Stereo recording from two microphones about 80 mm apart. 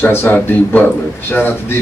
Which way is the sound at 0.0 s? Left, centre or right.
Left.